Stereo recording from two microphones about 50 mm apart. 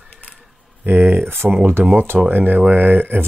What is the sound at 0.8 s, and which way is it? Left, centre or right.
Speech, right.